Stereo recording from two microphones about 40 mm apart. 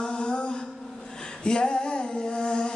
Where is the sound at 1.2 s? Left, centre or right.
Centre.